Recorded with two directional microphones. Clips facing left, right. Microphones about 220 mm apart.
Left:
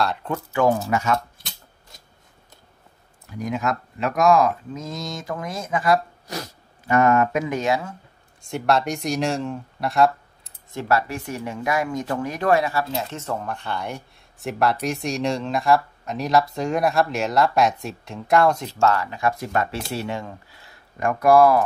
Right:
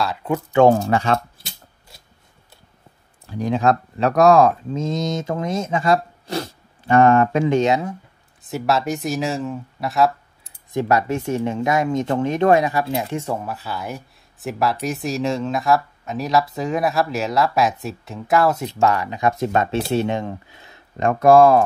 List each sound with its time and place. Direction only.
0.0 s speech: 5° right (ahead or behind)
0.6 s speech: 30° right (ahead or behind)
3.3 s speech: 30° right (ahead or behind)
8.4 s speech: 5° right (ahead or behind)
10.7 s speech: 15° right (ahead or behind)